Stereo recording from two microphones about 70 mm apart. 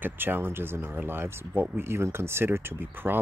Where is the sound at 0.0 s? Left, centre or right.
Right.